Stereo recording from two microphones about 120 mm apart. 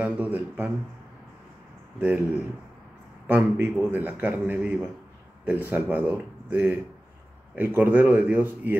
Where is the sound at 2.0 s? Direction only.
10° right (ahead or behind).